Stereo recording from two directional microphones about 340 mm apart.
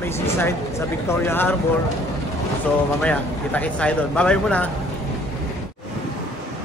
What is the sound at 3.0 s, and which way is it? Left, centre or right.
Speech, centre.